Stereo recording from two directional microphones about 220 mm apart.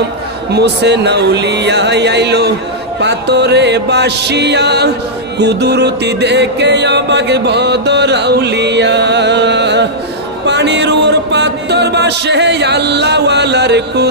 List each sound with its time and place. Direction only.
0.5 s a man's voice: 50° right (ahead or behind)
5.4 s music: 50° right (ahead or behind)